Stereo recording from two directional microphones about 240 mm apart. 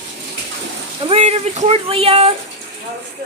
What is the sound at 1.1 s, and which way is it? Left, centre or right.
Speech, right.